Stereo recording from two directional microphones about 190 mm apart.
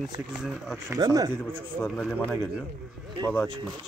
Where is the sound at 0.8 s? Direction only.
20° right (ahead or behind).